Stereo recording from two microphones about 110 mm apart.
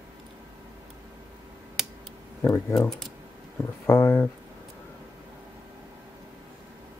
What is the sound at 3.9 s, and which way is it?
Speech, 25° left (ahead or behind).